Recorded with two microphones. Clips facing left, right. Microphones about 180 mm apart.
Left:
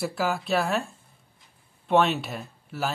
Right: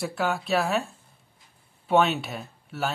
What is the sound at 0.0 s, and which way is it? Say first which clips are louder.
Speech: even; centre (ahead or behind).